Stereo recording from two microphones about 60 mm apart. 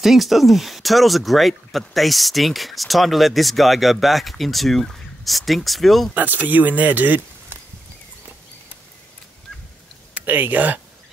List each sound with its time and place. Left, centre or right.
0.0 s speech: centre
6.1 s speech: right
10.2 s speech: right